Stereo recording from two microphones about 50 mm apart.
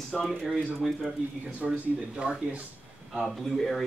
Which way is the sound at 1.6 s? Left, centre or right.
Centre.